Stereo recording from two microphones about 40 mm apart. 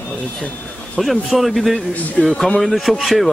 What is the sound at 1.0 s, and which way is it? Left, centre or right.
Speech, centre.